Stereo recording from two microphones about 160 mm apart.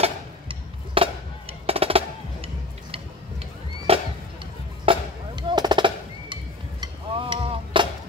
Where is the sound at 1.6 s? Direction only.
35° right (ahead or behind).